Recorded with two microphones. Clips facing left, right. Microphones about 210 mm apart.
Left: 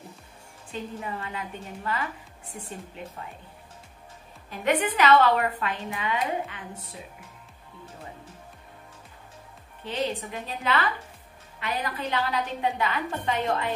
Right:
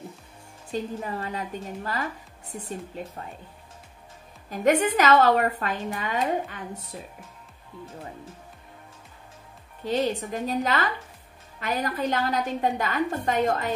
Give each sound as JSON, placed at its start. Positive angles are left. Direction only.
{"t": 0.7, "sound": "a woman's voice", "side_deg": -35}
{"t": 4.5, "sound": "a woman's voice", "side_deg": -45}
{"t": 9.8, "sound": "a woman's voice", "side_deg": -40}